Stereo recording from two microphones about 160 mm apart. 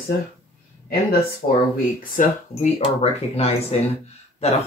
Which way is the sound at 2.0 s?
55° left (ahead or behind).